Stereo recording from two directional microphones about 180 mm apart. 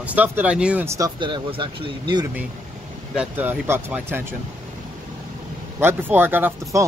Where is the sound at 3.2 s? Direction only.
10° right (ahead or behind).